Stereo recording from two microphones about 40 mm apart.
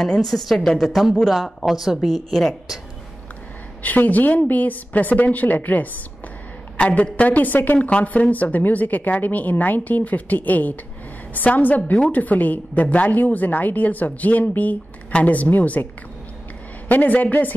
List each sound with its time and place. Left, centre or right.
0.2 s a woman's voice: centre
1.7 s speech: centre
2.0 s a woman's voice: centre
3.8 s a woman's voice: left
6.8 s a woman's voice: left
7.2 s a woman's voice: left
16.9 s a woman's voice: left